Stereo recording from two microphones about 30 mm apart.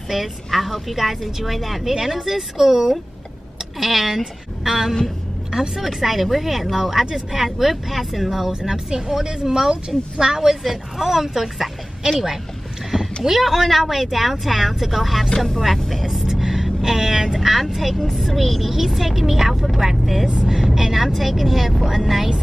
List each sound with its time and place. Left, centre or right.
0.1 s a woman's voice: centre
2.0 s a woman's voice: centre
8.5 s a woman's voice: centre
10.6 s a woman's voice: centre
16.3 s a sound: centre
16.8 s a woman's voice: centre
20.4 s a woman's voice: centre